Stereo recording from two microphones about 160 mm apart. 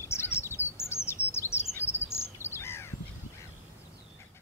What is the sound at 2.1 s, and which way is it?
Bird, 15° left (ahead or behind).